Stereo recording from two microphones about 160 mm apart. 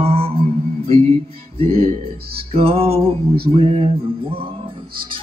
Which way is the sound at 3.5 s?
35° right (ahead or behind).